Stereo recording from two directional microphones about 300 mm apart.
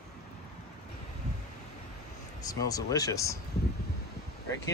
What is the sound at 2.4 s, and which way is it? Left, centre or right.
Speech, centre.